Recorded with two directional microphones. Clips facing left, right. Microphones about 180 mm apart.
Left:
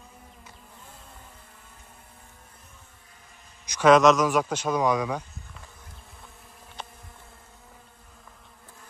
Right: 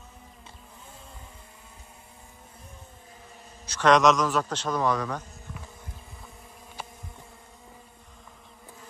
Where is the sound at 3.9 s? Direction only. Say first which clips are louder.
Left 3 dB; centre (ahead or behind).